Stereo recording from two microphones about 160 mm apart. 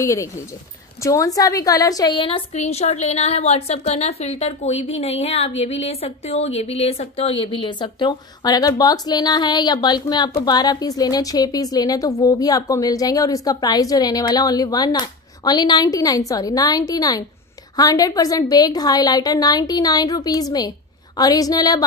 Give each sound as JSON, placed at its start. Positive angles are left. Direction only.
{"t": 0.0, "sound": "a woman's voice", "side_deg": 20}